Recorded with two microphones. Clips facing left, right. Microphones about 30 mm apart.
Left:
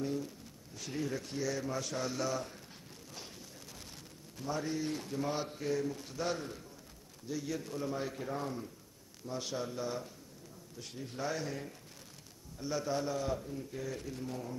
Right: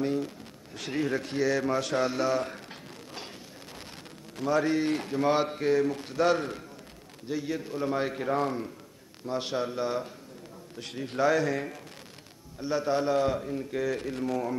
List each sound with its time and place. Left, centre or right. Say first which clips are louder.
0.0 s speech: right 8 dB; right
2.1 s speech: right 8 dB; right
4.4 s speech: right 11 dB; right
7.2 s a man's voice: right 6 dB; right
7.8 s speech: right 9 dB; right
9.2 s speech: right 8 dB; right
10.8 s speech: right 12 dB; right
12.5 s speech: right 8 dB; right